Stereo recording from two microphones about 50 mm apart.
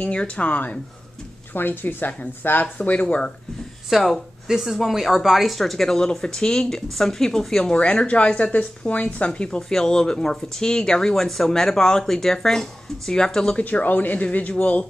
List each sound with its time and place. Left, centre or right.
0.0 s speech: left
1.5 s a woman's voice: left
3.9 s speech: centre
7.7 s speech: left
13.6 s a woman's voice: left